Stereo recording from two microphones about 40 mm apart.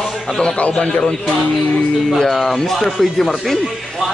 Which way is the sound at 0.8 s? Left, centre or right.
Left.